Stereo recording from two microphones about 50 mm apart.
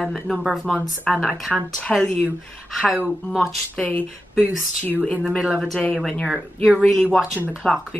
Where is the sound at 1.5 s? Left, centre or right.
Left.